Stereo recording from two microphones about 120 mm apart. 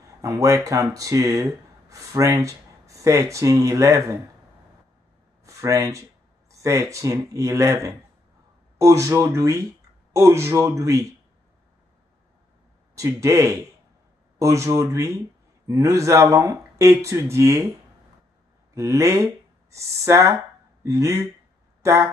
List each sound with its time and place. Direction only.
0.2 s speech: 25° right (ahead or behind)
5.4 s speech: 25° right (ahead or behind)
12.9 s speech: 25° right (ahead or behind)
18.8 s speech: 25° right (ahead or behind)